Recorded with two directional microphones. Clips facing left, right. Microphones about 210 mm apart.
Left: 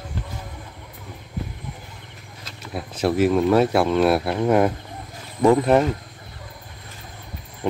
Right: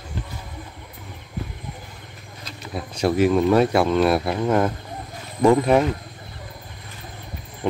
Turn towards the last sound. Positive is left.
turn(degrees=0)  # may be behind; listen again after turning